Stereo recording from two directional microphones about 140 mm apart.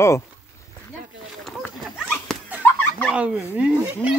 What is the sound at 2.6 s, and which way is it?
Turkey, 10° left (ahead or behind).